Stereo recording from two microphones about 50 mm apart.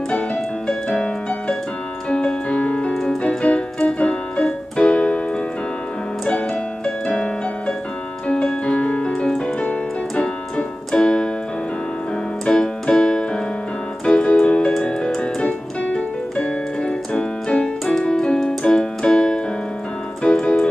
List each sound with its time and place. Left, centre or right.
0.7 s music: centre
2.9 s keyboard: centre
3.2 s keyboard: left
6.2 s music: left
8.6 s music: left
9.6 s keyboard: left
12.4 s keyboard: centre
18.6 s music: centre
20.2 s keyboard: left